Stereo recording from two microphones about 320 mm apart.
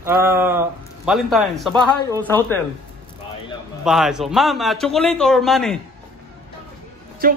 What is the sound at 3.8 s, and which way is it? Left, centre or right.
A man's voice, centre.